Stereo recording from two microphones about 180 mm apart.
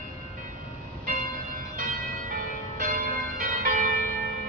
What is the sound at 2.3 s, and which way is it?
Church bell, 50° right (ahead or behind).